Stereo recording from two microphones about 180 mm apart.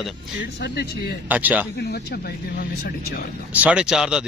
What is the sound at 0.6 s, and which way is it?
Speech, 65° left (ahead or behind).